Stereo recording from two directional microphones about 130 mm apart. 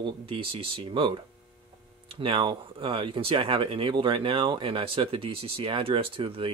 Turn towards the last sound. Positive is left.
turn(degrees=-45)  # may be behind; listen again after turning